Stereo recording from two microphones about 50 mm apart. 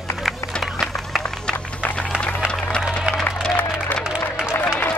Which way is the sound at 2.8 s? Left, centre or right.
Centre.